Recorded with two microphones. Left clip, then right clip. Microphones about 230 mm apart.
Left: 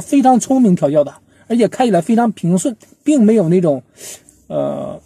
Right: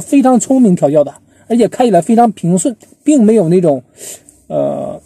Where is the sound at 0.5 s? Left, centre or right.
Centre.